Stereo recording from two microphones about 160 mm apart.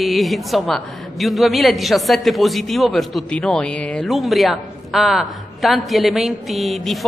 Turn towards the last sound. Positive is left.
turn(degrees=0)  # may be behind; listen again after turning